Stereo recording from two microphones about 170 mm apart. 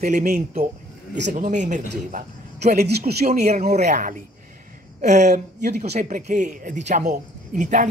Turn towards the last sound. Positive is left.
turn(degrees=-45)  # may be behind; listen again after turning